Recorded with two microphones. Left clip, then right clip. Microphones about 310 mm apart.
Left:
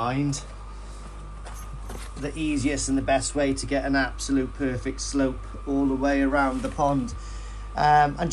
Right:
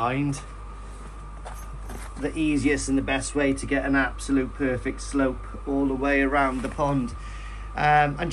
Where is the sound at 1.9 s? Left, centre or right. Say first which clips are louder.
Right 4 dB; centre.